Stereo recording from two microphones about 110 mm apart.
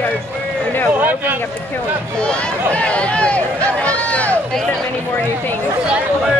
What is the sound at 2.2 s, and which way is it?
Speech, 10° left (ahead or behind).